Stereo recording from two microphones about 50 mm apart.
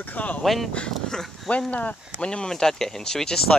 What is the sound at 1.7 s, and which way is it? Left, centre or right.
Speech, left.